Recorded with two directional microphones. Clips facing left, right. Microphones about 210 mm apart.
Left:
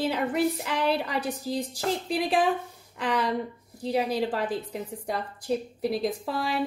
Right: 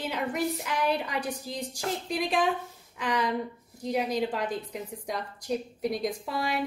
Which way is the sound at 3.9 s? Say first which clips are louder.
Left 2 dB; 5° left (ahead or behind).